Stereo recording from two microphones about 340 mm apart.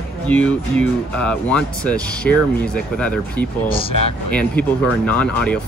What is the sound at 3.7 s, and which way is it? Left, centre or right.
Speech, centre.